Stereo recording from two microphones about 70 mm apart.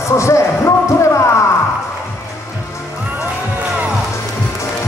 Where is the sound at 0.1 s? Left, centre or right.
Left.